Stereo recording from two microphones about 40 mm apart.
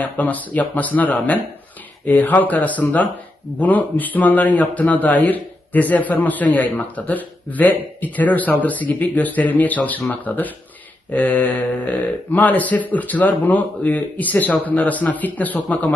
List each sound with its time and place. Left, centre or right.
0.0 s a man's voice: left